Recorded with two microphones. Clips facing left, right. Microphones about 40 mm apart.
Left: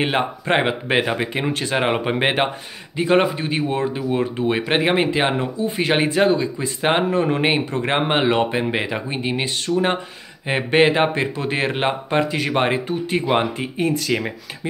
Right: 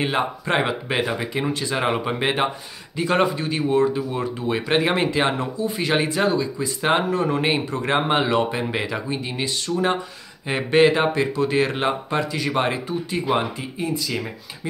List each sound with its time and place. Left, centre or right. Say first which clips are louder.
0.0 s speech: left 2 dB; left
1.8 s speech: left 4 dB; left
3.0 s speech: left 3 dB; left
13.7 s speech: left 5 dB; left